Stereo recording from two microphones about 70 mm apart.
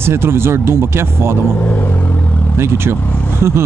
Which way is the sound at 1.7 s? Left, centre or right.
Left.